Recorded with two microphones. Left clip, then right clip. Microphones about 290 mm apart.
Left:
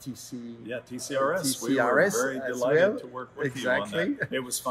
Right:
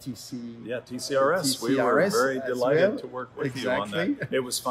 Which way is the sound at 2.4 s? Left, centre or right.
Right.